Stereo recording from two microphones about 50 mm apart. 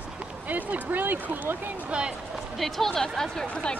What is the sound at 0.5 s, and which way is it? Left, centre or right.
Speech, right.